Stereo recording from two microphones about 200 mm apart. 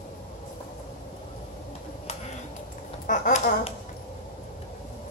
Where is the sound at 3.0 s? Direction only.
40° left (ahead or behind).